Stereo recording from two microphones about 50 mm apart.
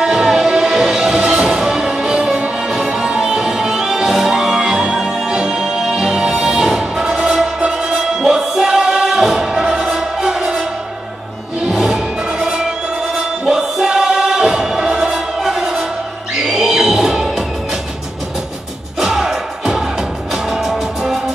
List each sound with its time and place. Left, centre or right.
0.0 s music: centre
11.6 s music: centre
18.9 s music: centre